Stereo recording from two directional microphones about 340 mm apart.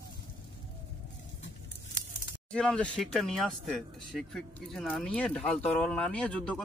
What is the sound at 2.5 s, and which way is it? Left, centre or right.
Speech, centre.